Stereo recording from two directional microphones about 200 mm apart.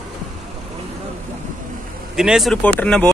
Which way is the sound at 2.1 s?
5° right (ahead or behind).